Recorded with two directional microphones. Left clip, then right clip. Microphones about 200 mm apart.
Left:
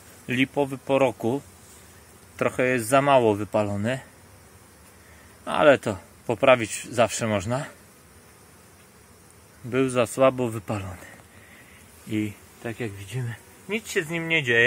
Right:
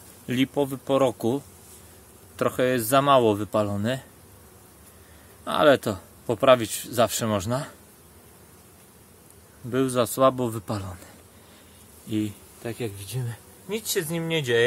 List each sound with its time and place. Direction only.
0.3 s speech: 5° right (ahead or behind)
2.3 s speech: 5° left (ahead or behind)
5.4 s speech: centre (ahead or behind)
9.7 s speech: 5° left (ahead or behind)
12.6 s speech: 15° left (ahead or behind)